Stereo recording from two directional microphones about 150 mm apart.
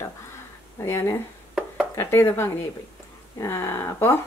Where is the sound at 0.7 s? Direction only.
15° left (ahead or behind).